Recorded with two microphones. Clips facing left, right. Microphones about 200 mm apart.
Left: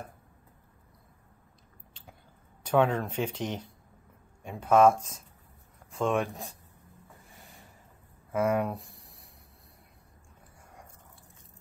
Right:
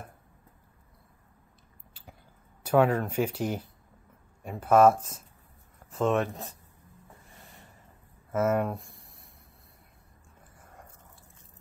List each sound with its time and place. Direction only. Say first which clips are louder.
2.0 s a sound: right 1 dB; 10° right (ahead or behind)
2.6 s speech: right 2 dB; 10° right (ahead or behind)
7.2 s snort: even; centre (ahead or behind)
8.3 s speech: right 1 dB; 5° right (ahead or behind)